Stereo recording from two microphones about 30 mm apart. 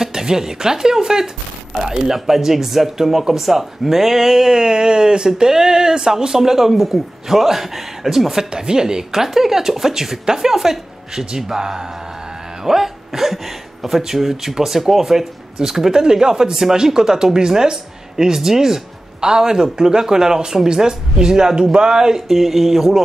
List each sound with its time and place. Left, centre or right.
0.0 s speech: centre
8.6 s speech: right
22.3 s speech: centre